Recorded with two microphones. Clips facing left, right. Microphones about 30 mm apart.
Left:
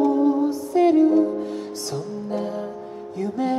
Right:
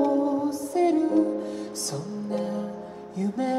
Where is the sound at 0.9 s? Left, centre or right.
Centre.